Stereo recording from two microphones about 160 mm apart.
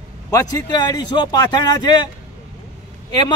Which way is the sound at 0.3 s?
20° left (ahead or behind).